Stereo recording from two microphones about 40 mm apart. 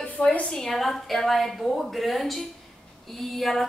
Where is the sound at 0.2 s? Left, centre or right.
Left.